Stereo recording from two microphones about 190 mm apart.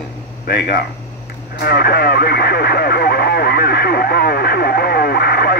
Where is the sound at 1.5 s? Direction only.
55° left (ahead or behind).